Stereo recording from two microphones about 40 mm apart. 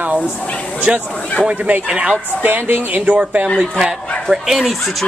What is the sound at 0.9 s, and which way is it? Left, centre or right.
Speech, right.